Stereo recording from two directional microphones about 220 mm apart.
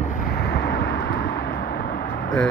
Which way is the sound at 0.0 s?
40° left (ahead or behind).